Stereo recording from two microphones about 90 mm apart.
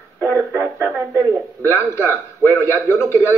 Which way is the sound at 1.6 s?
30° left (ahead or behind).